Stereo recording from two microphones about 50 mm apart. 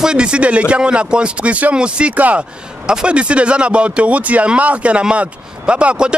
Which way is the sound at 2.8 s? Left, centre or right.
Centre.